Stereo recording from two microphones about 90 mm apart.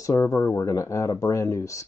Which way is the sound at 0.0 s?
35° left (ahead or behind).